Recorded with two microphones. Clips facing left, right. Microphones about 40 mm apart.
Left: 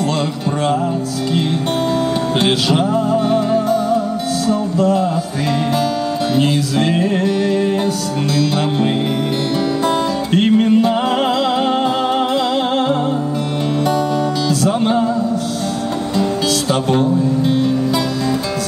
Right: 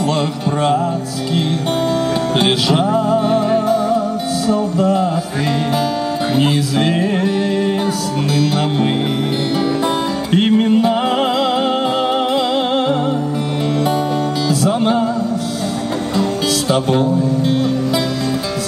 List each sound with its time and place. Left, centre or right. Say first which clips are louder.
2.3 s music: right 1 dB; centre
6.3 s music: right 1 dB; centre
10.3 s music: even; centre
14.6 s music: even; centre